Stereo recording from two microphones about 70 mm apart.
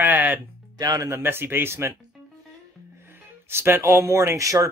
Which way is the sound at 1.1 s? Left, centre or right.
Right.